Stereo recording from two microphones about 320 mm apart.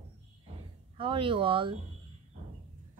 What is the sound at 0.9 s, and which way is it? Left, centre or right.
Speech, centre.